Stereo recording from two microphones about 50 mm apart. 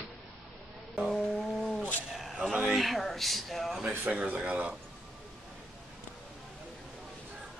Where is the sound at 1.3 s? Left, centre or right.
Centre.